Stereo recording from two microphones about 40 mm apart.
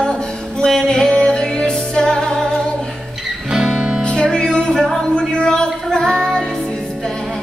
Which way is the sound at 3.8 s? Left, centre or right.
Right.